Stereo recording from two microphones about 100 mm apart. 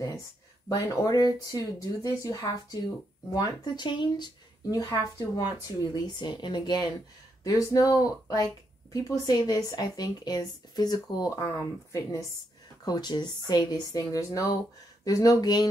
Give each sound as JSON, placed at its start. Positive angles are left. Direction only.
{"t": 0.7, "sound": "speech", "side_deg": 40}